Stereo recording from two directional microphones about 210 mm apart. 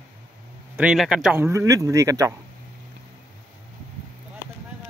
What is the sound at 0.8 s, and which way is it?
Speech, 5° right (ahead or behind).